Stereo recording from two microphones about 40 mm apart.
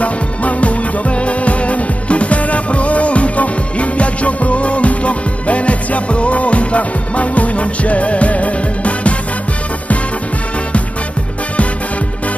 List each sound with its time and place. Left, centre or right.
0.0 s music: left